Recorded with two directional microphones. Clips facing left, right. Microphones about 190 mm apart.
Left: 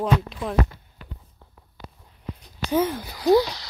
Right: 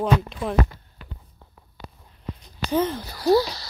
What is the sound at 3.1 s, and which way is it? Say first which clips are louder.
Speech: left 1 dB; 15° left (ahead or behind).